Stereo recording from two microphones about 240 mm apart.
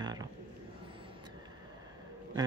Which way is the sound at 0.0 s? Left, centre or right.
Centre.